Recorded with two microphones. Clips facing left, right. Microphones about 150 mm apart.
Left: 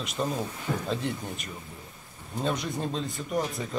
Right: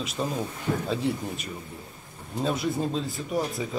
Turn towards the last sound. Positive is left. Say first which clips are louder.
# right 1 dB
turn(degrees=-5)  # may be behind; listen again after turning